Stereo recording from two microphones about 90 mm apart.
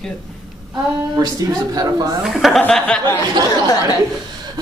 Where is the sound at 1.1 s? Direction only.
40° right (ahead or behind).